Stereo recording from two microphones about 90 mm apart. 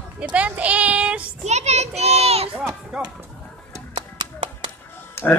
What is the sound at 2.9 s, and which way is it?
Speech, 5° right (ahead or behind).